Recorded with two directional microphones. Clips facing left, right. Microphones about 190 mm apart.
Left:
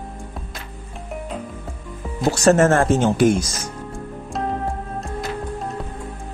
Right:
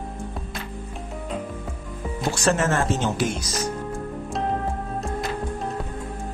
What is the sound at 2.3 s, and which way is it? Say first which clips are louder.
Speech: left 8 dB; 45° left (ahead or behind).